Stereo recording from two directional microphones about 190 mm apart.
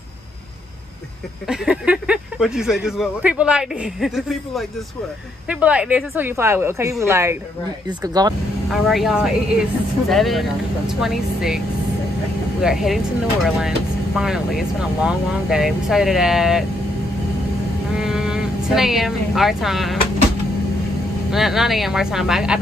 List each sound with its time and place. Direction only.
1.5 s a woman's voice: 5° right (ahead or behind); by 8.4 s 20° right (ahead or behind)
8.6 s speech: centre (ahead or behind)
12.6 s speech: centre (ahead or behind)
17.9 s speech: 5° right (ahead or behind)
21.3 s speech: centre (ahead or behind)